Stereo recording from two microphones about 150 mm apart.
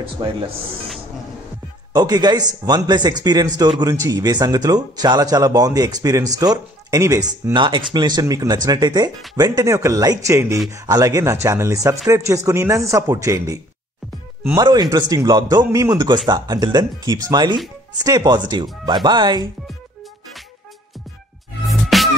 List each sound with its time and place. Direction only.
0.0 s speech: 40° right (ahead or behind)
2.0 s a man's voice: 25° right (ahead or behind)
14.6 s a man's voice: 25° right (ahead or behind)
21.6 s music: centre (ahead or behind)